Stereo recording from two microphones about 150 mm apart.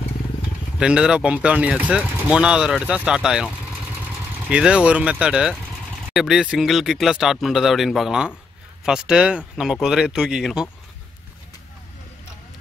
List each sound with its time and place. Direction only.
0.7 s speech: 5° right (ahead or behind)